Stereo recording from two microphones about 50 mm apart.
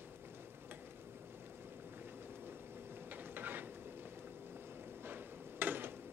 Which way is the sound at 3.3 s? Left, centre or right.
Right.